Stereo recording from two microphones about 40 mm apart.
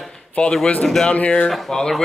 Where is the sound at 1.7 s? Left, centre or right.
Centre.